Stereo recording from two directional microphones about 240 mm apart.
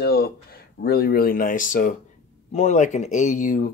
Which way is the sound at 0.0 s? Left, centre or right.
Left.